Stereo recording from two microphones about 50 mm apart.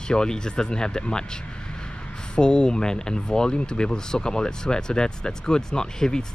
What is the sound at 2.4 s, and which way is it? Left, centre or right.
Speech, centre.